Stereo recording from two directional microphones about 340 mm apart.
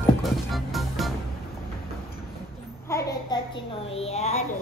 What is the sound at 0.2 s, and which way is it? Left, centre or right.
Music, centre.